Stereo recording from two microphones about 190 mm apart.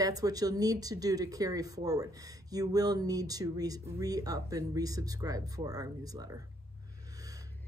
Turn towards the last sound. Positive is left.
turn(degrees=-20)  # may be behind; listen again after turning